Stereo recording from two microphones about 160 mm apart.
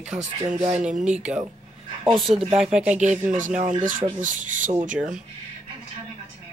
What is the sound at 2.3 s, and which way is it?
Speech, 45° right (ahead or behind).